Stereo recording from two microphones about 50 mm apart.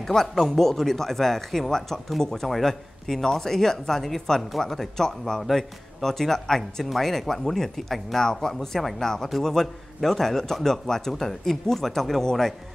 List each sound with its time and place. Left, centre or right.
0.0 s speech: centre